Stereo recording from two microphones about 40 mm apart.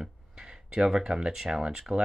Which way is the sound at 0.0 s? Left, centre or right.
Centre.